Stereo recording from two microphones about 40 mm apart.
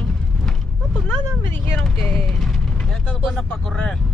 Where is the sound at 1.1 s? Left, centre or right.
Left.